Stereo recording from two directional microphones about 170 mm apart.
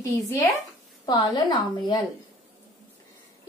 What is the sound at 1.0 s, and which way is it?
A woman's voice, 25° left (ahead or behind).